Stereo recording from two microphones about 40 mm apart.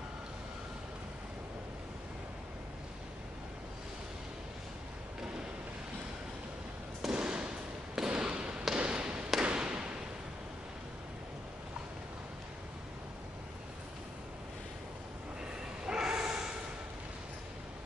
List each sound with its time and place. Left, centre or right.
7.2 s fireworks: right
8.7 s basketball bounce: right
9.4 s a sound: right
15.8 s bow-wow: centre